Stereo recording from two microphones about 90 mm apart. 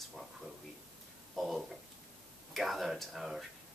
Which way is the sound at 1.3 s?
Centre (ahead or behind).